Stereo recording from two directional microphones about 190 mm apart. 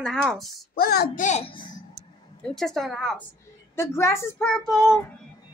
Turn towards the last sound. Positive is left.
turn(degrees=0)  # may be behind; listen again after turning